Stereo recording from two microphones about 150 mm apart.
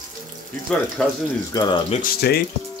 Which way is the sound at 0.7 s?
5° left (ahead or behind).